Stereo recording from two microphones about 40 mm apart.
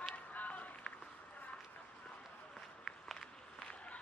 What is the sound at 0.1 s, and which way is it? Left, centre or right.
Run, left.